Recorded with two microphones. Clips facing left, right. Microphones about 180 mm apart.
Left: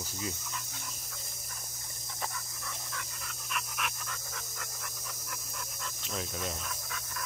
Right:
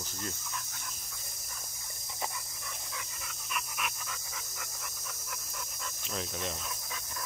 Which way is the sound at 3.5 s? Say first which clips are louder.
Even; centre (ahead or behind).